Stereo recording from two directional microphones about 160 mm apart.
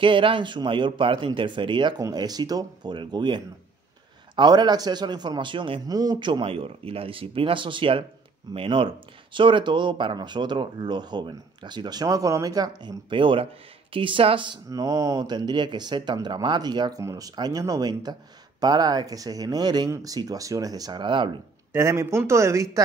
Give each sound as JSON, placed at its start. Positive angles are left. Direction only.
{"t": 0.0, "sound": "speech", "side_deg": -30}
{"t": 21.7, "sound": "speech", "side_deg": -15}